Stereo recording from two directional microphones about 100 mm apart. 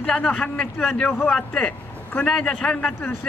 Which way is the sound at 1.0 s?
20° left (ahead or behind).